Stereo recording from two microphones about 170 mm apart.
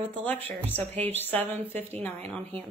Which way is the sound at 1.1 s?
10° left (ahead or behind).